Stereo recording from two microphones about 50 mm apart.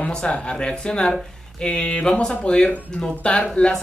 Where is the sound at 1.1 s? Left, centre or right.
Centre.